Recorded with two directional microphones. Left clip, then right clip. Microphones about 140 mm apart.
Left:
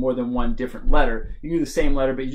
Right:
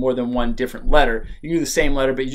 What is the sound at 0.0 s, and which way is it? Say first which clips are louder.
Speech: right 3 dB; 15° right (ahead or behind).